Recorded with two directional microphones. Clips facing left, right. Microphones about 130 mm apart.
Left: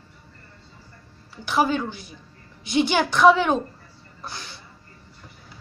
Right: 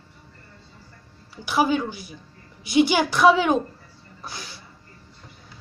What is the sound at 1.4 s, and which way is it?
A woman's voice, 5° right (ahead or behind).